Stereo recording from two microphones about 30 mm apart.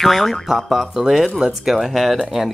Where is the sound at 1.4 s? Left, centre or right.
Centre.